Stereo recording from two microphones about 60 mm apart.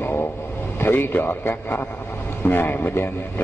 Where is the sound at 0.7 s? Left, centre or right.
Left.